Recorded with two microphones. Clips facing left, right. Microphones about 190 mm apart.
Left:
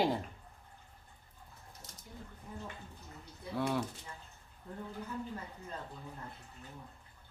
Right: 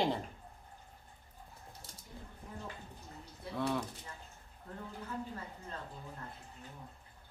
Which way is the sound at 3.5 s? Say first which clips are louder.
Left 1 dB; 5° left (ahead or behind).